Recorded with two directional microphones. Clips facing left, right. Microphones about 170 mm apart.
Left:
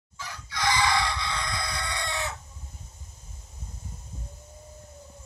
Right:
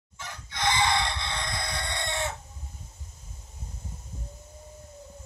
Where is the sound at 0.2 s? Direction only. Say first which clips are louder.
Even; 25° right (ahead or behind).